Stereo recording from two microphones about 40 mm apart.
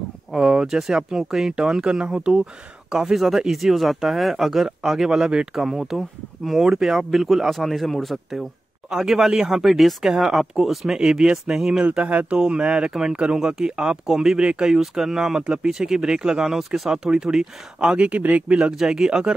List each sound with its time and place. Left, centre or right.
0.4 s speech: right
0.7 s speech: centre
3.2 s speech: centre
6.6 s speech: centre
11.0 s speech: centre
11.8 s speech: right
12.4 s speech: right
14.4 s speech: right
14.7 s speech: centre
16.5 s speech: centre; by 18.6 s right
18.8 s speech: centre